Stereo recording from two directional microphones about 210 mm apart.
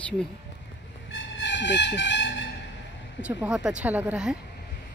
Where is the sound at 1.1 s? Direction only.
60° left (ahead or behind).